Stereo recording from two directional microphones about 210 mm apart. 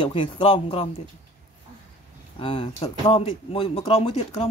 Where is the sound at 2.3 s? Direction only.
25° left (ahead or behind).